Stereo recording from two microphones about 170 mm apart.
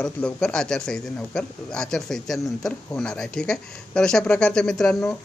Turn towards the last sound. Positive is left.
turn(degrees=5)  # may be behind; listen again after turning